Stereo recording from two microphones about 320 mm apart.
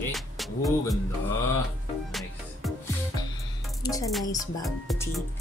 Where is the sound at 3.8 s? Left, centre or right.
Centre.